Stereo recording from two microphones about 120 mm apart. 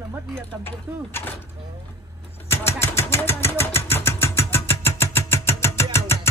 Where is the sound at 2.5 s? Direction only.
20° left (ahead or behind).